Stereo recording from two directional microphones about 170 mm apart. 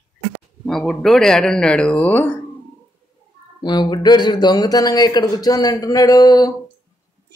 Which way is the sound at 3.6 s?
25° left (ahead or behind).